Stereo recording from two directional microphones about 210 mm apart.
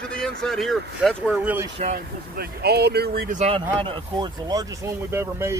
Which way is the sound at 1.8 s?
45° right (ahead or behind).